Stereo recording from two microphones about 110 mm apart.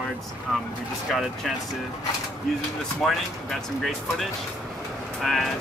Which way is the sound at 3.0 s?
Centre (ahead or behind).